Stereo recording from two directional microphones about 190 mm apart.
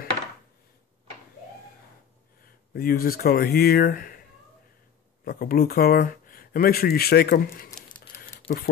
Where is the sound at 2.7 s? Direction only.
50° left (ahead or behind).